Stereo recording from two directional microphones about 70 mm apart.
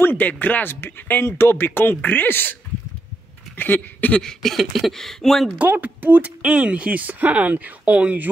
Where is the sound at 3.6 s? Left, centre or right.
Left.